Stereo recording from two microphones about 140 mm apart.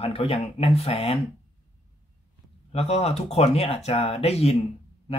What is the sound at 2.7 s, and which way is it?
Speech, 50° left (ahead or behind).